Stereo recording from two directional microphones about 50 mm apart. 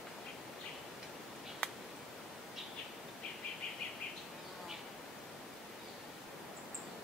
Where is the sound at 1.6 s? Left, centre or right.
Left.